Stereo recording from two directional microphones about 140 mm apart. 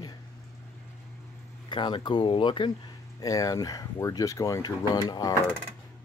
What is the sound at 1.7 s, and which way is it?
Speech, 35° left (ahead or behind).